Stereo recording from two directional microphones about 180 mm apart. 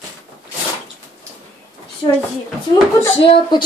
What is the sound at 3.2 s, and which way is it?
Speech, 30° left (ahead or behind).